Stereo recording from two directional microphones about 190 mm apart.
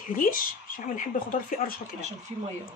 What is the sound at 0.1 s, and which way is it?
Speech, 45° left (ahead or behind).